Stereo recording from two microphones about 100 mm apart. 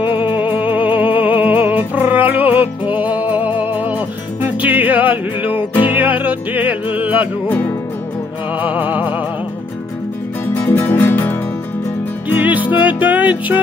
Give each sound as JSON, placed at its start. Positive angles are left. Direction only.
{"t": 0.2, "sound": "music", "side_deg": -15}
{"t": 5.5, "sound": "music", "side_deg": 60}
{"t": 5.9, "sound": "music", "side_deg": -15}
{"t": 8.5, "sound": "music", "side_deg": -15}
{"t": 10.5, "sound": "music", "side_deg": 15}
{"t": 12.4, "sound": "music", "side_deg": -15}